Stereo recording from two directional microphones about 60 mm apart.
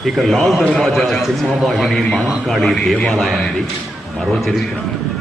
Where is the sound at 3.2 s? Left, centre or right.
Centre.